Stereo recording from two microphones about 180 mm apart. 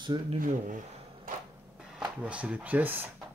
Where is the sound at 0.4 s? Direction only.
50° right (ahead or behind).